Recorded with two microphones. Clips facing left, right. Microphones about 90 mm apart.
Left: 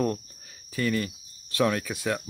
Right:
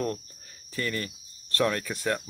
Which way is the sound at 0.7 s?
15° left (ahead or behind).